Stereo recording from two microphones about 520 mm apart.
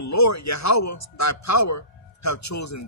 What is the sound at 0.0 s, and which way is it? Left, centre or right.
A man's voice, left.